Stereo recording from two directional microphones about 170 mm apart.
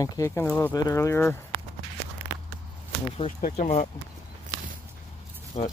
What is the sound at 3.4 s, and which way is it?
Speech, 45° left (ahead or behind).